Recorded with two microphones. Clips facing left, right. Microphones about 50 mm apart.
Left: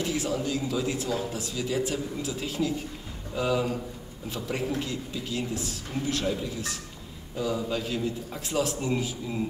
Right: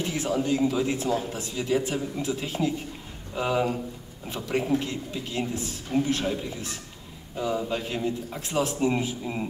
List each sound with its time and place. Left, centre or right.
0.0 s speech: right